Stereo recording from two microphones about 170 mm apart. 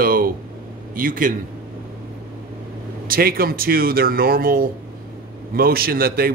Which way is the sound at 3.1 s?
60° right (ahead or behind).